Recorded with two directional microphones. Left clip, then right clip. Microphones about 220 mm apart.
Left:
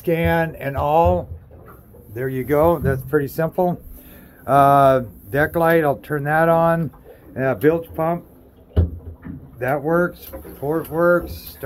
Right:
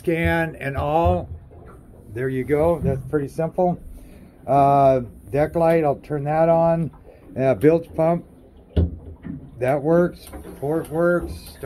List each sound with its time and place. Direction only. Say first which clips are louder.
0.0 s speech: left 2 dB; 10° left (ahead or behind)
2.7 s speech: left 3 dB; 30° left (ahead or behind)
7.3 s speech: right 1 dB; centre (ahead or behind)
9.6 s speech: right 1 dB; centre (ahead or behind)
10.6 s speech: left 2 dB; 15° left (ahead or behind)